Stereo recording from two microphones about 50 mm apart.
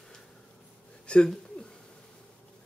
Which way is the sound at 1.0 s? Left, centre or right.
Left.